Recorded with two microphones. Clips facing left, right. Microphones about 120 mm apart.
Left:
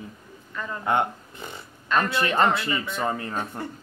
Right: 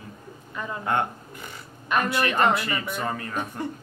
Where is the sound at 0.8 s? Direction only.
20° left (ahead or behind).